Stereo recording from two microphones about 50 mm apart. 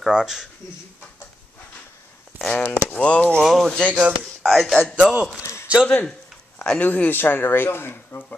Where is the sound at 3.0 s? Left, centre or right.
Left.